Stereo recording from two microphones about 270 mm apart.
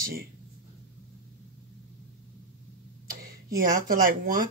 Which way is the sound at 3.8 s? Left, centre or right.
Right.